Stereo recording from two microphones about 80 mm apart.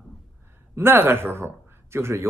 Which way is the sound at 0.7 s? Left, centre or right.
Right.